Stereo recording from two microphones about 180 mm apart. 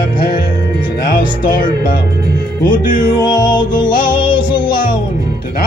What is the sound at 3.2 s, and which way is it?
Music, 25° left (ahead or behind).